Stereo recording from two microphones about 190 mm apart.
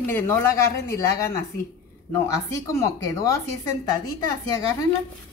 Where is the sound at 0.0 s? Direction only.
10° left (ahead or behind).